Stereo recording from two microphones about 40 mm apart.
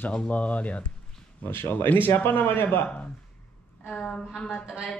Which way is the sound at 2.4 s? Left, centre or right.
Left.